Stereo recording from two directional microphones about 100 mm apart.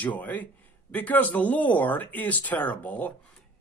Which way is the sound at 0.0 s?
15° left (ahead or behind).